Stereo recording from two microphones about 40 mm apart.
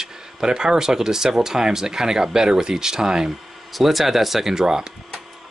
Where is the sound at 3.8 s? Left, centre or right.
Centre.